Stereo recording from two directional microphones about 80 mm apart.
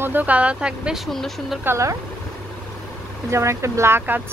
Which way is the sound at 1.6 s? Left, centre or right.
Right.